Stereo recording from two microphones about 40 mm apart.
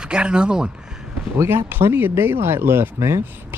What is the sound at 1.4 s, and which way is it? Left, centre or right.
Speech, right.